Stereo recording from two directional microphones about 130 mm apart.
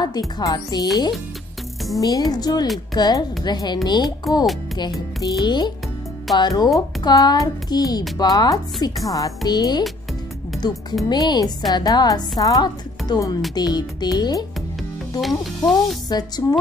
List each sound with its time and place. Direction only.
0.0 s a child's voice: 30° left (ahead or behind)
2.0 s a child's voice: 30° left (ahead or behind)
4.7 s music: 35° left (ahead or behind)
5.4 s a child's voice: 35° left (ahead or behind)
15.1 s speech: centre (ahead or behind)
16.1 s a child's voice: 30° left (ahead or behind)